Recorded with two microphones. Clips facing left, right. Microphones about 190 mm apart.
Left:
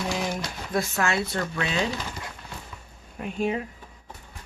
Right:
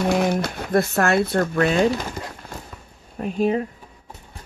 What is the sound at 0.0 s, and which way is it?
Speech, 60° right (ahead or behind).